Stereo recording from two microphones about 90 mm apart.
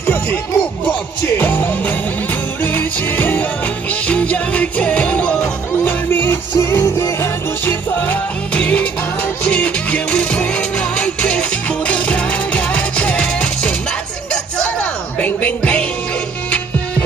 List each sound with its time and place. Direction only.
0.0 s music: 20° left (ahead or behind)
15.1 s music: 15° left (ahead or behind)